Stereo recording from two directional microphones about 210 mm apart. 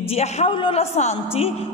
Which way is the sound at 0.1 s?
30° left (ahead or behind).